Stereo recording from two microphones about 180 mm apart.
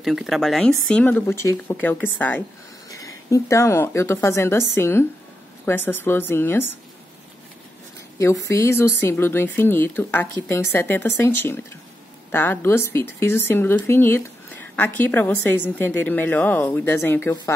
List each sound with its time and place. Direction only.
0.0 s a woman's voice: centre (ahead or behind)
8.2 s speech: 15° left (ahead or behind)